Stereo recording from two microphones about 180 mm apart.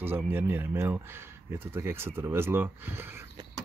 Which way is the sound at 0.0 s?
10° right (ahead or behind).